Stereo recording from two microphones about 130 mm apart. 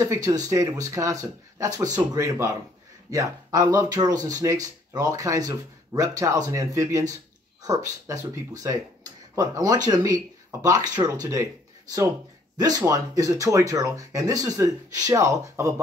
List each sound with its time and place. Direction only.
0.0 s speech: 25° right (ahead or behind)
9.3 s speech: 25° right (ahead or behind)
12.5 s speech: 30° right (ahead or behind)